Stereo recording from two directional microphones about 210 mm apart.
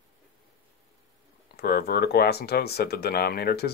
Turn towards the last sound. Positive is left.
turn(degrees=50)  # may be behind; listen again after turning